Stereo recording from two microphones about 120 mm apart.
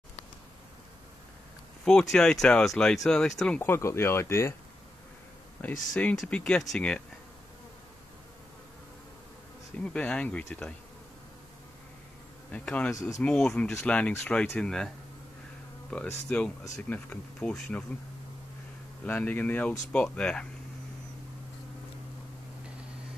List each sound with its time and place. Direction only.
1.9 s speech: 5° left (ahead or behind)
3.6 s speech: 20° left (ahead or behind)
5.6 s speech: 10° left (ahead or behind)
9.8 s speech: 10° left (ahead or behind)
12.4 s speech: 10° left (ahead or behind)
15.9 s speech: 5° left (ahead or behind)
19.0 s speech: 15° left (ahead or behind)